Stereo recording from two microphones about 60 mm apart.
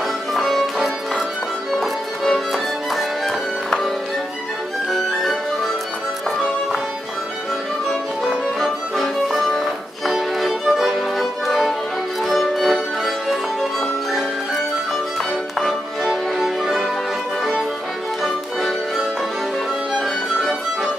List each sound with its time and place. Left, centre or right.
0.3 s music: centre
4.9 s music: centre
8.5 s music: centre
15.6 s music: centre
18.2 s music: centre